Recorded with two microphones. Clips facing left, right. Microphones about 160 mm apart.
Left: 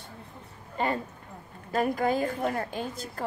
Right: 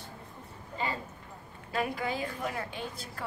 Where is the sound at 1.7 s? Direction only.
45° left (ahead or behind).